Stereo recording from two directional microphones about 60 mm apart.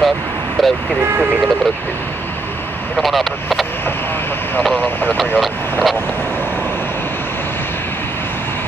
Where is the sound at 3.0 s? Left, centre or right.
Centre.